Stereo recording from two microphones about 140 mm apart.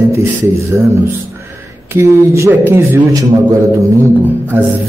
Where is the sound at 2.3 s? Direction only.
20° right (ahead or behind).